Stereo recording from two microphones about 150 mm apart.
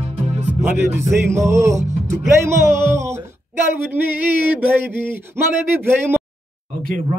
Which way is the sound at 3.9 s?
10° right (ahead or behind).